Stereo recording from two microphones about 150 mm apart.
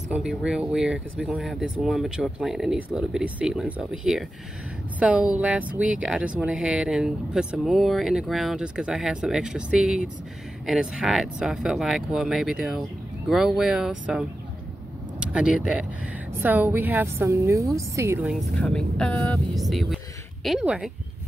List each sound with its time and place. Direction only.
0.1 s a woman's voice: 5° right (ahead or behind)
18.6 s speech: 5° left (ahead or behind)
19.5 s speech: centre (ahead or behind)